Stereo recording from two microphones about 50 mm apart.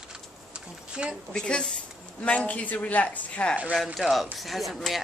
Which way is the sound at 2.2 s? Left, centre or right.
Left.